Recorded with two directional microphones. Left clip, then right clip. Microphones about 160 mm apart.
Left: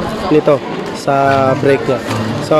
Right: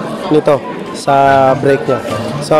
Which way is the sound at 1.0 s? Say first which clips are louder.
Right 4 dB; 10° right (ahead or behind).